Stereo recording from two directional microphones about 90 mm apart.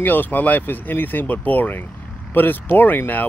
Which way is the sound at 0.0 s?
20° left (ahead or behind).